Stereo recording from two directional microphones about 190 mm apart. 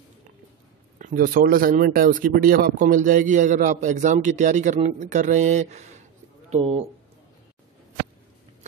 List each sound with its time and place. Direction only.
0.9 s speech: 45° right (ahead or behind)